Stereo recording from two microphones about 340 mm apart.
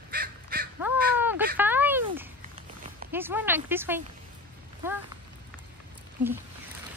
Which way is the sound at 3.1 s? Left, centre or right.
Centre.